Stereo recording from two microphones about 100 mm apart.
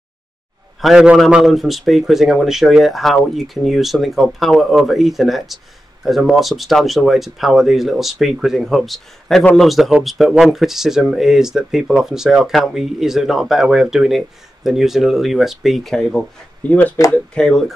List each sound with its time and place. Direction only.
0.7 s a man's voice: centre (ahead or behind)
16.6 s speech: 15° left (ahead or behind)